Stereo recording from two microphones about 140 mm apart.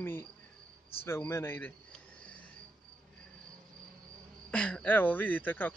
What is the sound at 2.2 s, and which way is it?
Cricket, 10° left (ahead or behind).